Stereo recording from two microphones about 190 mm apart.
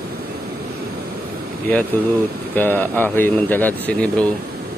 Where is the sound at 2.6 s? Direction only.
10° left (ahead or behind).